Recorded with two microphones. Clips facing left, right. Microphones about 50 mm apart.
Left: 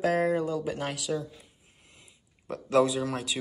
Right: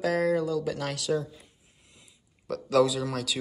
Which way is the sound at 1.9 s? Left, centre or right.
Left.